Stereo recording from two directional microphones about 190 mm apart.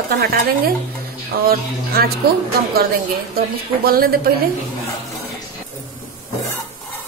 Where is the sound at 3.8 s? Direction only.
50° right (ahead or behind).